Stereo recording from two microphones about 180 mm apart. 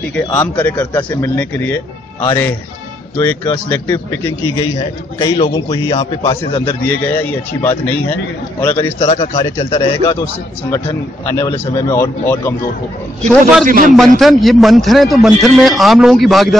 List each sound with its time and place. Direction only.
0.1 s speech: 10° left (ahead or behind)
4.6 s a man's voice: 25° left (ahead or behind)
6.6 s speech: 10° left (ahead or behind)
9.3 s a man's voice: 30° left (ahead or behind)
11.2 s speech: 15° left (ahead or behind)
13.3 s a man's voice: centre (ahead or behind)
13.7 s a man's voice: 50° right (ahead or behind)
13.9 s a man's voice: centre (ahead or behind)